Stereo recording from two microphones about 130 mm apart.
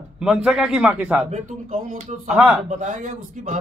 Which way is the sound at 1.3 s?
90° right.